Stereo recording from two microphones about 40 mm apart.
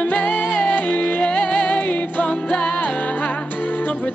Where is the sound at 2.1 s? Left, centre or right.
Left.